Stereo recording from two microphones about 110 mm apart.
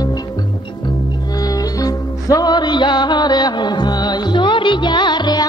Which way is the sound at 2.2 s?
35° left (ahead or behind).